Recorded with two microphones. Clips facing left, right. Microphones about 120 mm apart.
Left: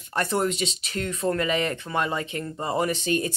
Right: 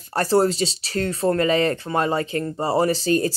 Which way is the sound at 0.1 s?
35° right (ahead or behind).